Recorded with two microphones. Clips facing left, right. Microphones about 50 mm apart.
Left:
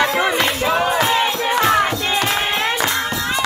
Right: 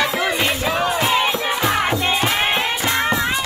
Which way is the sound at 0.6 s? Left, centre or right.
Centre.